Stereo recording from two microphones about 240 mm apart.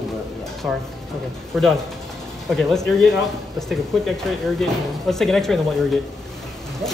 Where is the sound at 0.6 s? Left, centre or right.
Centre.